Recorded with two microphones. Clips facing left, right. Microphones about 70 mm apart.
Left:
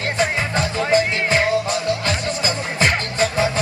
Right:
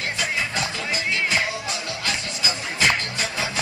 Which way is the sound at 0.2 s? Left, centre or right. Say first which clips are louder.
Left 6 dB; left.